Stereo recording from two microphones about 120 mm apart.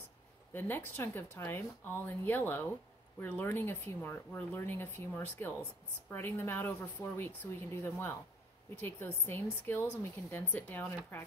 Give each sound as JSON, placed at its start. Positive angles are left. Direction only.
{"t": 0.5, "sound": "speech", "side_deg": 20}